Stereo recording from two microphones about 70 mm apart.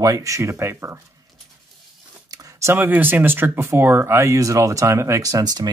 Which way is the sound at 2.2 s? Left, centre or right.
Right.